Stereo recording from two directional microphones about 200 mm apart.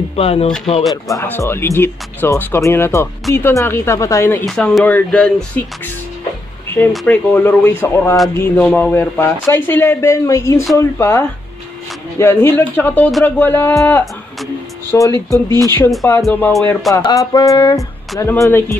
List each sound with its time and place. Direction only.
0.1 s speech: 30° left (ahead or behind)
1.0 s speech: 15° left (ahead or behind)
4.5 s speech: centre (ahead or behind)
6.9 s speech: 10° left (ahead or behind)
15.3 s speech: 15° right (ahead or behind)
16.2 s speech: 5° left (ahead or behind)
16.9 s speech: 15° left (ahead or behind)